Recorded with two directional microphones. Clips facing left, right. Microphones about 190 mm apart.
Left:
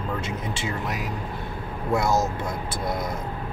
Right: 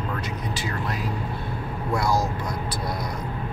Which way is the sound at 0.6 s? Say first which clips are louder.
Even; 20° left (ahead or behind).